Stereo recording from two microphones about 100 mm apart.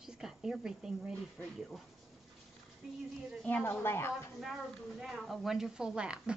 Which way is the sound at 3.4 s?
20° left (ahead or behind).